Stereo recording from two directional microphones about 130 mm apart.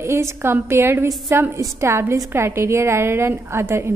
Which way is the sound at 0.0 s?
20° right (ahead or behind).